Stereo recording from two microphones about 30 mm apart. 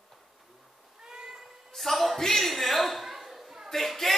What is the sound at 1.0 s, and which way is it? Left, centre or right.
Cat, right.